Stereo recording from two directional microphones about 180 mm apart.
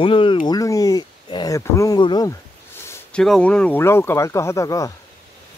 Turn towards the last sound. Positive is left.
turn(degrees=20)  # may be behind; listen again after turning